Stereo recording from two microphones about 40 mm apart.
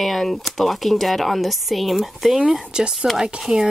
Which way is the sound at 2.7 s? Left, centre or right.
Centre.